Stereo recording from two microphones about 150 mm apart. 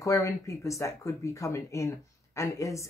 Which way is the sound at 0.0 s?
20° left (ahead or behind).